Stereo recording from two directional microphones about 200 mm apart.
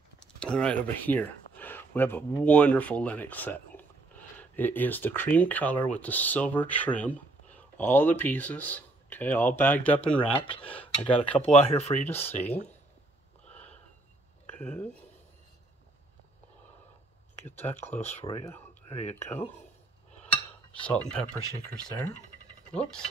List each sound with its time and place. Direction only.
0.2 s speech: 5° left (ahead or behind)
10.3 s speech: 25° left (ahead or behind)
10.6 s speech: 5° left (ahead or behind)
11.5 s speech: 35° left (ahead or behind)
12.1 s speech: 10° left (ahead or behind)
13.5 s snort: 5° left (ahead or behind)
14.6 s speech: 10° left (ahead or behind)
18.0 s speech: 15° left (ahead or behind)
18.9 s speech: 35° left (ahead or behind)
20.8 s speech: 5° left (ahead or behind)